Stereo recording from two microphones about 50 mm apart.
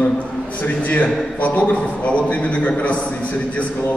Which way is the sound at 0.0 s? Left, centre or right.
Left.